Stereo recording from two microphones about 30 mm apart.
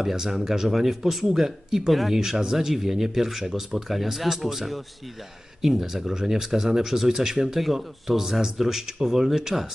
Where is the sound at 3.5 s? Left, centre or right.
Centre.